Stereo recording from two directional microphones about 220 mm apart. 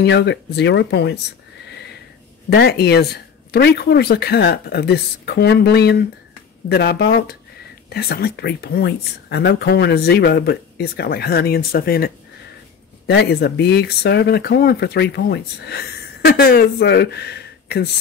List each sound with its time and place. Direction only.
0.0 s speech: 50° left (ahead or behind)
2.5 s speech: 50° left (ahead or behind)